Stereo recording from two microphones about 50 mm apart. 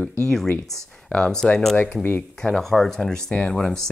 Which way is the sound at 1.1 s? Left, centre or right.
Centre.